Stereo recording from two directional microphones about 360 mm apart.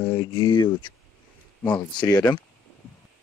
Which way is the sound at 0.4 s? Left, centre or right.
Centre.